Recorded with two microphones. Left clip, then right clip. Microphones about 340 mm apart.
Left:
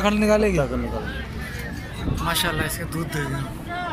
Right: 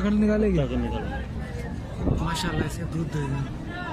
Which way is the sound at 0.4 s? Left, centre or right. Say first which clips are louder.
Left 4 dB; left.